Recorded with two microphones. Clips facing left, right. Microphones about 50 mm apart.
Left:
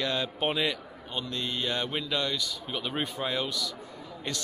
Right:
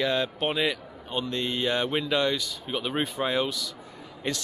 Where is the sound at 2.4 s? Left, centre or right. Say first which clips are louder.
Right 3 dB; centre.